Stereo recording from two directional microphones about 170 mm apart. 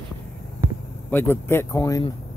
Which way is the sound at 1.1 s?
15° left (ahead or behind).